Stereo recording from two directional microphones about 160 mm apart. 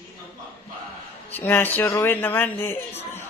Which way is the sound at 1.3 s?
10° left (ahead or behind).